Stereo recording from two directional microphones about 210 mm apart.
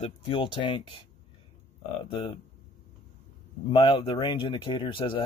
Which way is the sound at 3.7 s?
25° left (ahead or behind).